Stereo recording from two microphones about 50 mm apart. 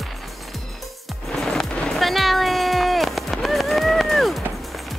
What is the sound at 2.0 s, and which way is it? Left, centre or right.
Run, centre.